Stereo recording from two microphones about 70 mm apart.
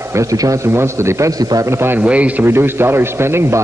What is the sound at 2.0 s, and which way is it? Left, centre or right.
Speech, centre.